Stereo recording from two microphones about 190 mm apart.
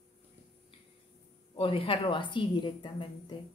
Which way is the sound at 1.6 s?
30° left (ahead or behind).